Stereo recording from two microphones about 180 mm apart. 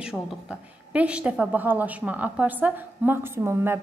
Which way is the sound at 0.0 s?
5° right (ahead or behind).